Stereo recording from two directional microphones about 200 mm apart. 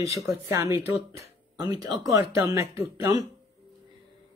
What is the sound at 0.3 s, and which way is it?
Speech, 15° right (ahead or behind).